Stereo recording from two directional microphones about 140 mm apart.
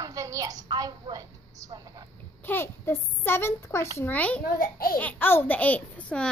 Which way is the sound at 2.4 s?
15° left (ahead or behind).